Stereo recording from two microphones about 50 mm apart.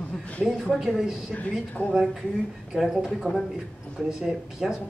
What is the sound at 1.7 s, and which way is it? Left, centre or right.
Speech, left.